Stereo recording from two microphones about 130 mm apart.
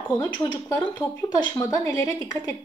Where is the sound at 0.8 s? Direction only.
20° left (ahead or behind).